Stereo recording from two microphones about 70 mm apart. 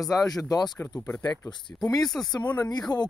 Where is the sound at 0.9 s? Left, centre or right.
Centre.